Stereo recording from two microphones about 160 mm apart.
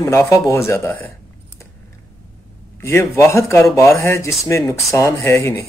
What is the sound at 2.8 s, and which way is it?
A man's voice, 15° left (ahead or behind).